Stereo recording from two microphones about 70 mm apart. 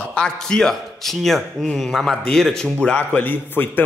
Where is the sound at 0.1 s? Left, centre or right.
Centre.